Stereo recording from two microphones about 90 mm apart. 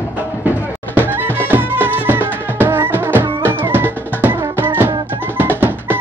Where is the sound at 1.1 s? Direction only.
20° right (ahead or behind).